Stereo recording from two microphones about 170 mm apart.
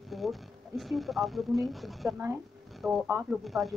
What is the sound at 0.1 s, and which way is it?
Speech, centre (ahead or behind).